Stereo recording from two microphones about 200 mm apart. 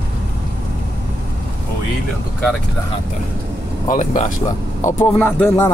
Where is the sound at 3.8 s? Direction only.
40° left (ahead or behind).